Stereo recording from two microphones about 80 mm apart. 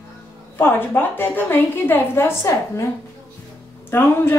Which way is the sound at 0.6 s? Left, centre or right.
Left.